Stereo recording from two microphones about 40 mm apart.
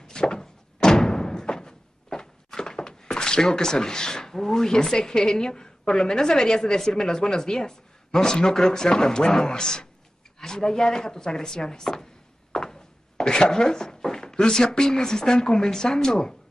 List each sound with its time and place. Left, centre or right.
0.0 s thunk: centre
0.9 s door: centre
10.4 s speech: centre
12.5 s walk: centre
13.2 s a sound: centre
14.5 s speech: centre